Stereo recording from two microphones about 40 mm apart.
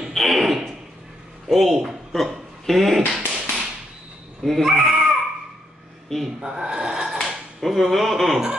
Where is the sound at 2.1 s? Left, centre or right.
Centre.